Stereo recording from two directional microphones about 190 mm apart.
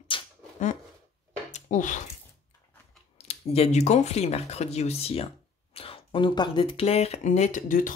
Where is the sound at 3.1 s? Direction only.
30° left (ahead or behind).